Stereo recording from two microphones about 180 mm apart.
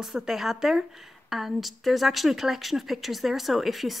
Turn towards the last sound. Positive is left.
turn(degrees=0)  # may be behind; listen again after turning